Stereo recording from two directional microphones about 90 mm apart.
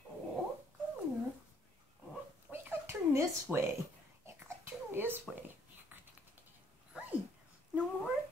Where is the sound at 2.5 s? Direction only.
30° right (ahead or behind).